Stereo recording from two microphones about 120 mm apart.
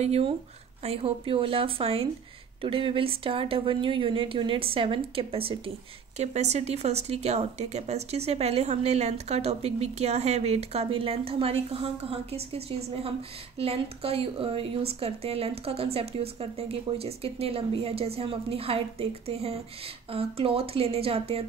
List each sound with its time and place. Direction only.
0.0 s speech: 60° right (ahead or behind)
0.8 s speech: 50° right (ahead or behind)
6.1 s speech: 70° right (ahead or behind)